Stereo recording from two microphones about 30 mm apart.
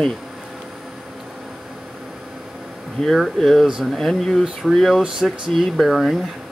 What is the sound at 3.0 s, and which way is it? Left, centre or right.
Speech, centre.